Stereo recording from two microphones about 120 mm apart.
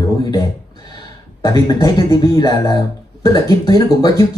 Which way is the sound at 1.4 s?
35° left (ahead or behind).